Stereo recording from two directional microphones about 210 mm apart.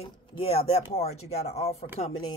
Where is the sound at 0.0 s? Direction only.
30° left (ahead or behind).